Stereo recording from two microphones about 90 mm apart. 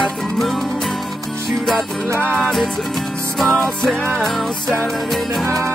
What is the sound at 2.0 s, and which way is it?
Music, 25° right (ahead or behind).